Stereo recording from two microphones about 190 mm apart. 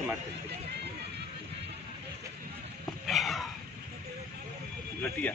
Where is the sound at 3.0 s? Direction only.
Centre (ahead or behind).